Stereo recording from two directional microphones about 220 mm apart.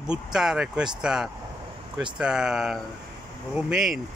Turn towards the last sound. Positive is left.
turn(degrees=-5)  # may be behind; listen again after turning